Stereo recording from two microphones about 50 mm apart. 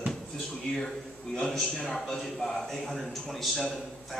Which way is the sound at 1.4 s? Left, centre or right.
Centre.